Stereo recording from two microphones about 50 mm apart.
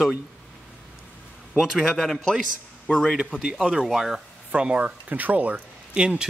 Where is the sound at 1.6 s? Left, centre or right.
Centre.